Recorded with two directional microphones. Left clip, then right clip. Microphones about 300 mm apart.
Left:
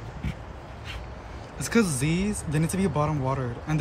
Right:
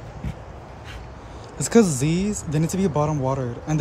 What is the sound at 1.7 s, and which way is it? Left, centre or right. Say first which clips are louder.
Speech: right 7 dB; centre.